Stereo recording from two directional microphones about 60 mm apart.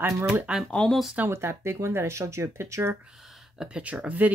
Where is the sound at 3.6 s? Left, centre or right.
Centre.